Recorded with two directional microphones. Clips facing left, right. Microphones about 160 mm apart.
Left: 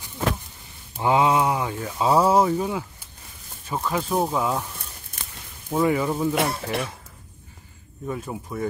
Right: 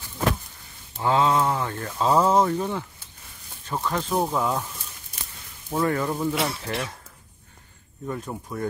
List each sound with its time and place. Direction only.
0.9 s speech: 15° left (ahead or behind)
5.7 s speech: 5° left (ahead or behind)
6.3 s speech: 50° left (ahead or behind)
8.1 s speech: 5° left (ahead or behind)